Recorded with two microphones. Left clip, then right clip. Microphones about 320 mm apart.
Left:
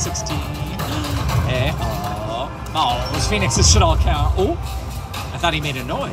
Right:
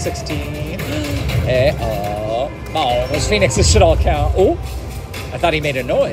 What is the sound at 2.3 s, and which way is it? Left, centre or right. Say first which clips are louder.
Music: right 5 dB; left.